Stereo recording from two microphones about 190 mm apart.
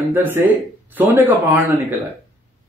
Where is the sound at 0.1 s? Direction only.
10° right (ahead or behind).